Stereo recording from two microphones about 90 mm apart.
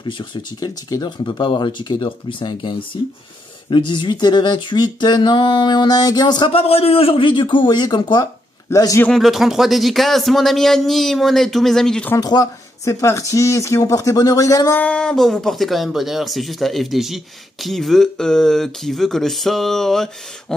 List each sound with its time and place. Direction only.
0.0 s speech: 60° left (ahead or behind)
6.5 s a man's voice: 90° left; by 8.2 s 55° left (ahead or behind)
8.7 s speech: 40° left (ahead or behind)
9.1 s speech: centre (ahead or behind)
12.2 s speech: 45° left (ahead or behind)
13.0 s speech: 35° left (ahead or behind)
14.8 s speech: 10° left (ahead or behind)